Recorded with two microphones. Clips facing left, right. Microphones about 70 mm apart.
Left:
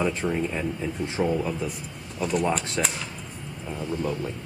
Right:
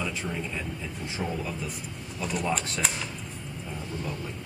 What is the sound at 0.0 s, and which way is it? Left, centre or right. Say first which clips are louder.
Speech: left 7 dB; left.